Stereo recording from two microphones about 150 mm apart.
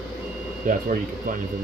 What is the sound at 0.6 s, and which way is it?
Speech, 65° right (ahead or behind).